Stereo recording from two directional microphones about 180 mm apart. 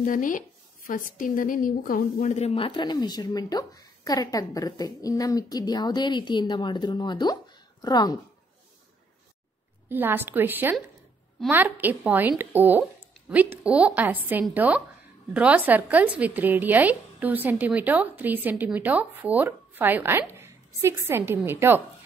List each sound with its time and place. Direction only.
0.0 s a woman's voice: 50° left (ahead or behind); by 8.2 s 20° left (ahead or behind)
9.8 s a woman's voice: 10° right (ahead or behind)